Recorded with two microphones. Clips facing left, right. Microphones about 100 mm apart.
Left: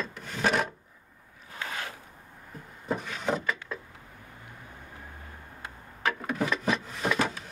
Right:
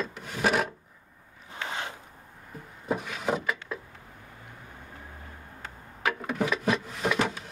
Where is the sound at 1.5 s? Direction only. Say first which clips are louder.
Right 2 dB; 25° right (ahead or behind).